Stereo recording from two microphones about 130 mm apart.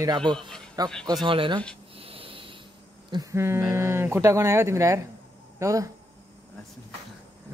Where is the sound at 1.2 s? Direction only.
40° right (ahead or behind).